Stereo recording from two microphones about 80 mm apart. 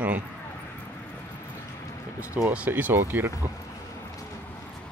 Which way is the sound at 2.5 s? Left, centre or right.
Centre.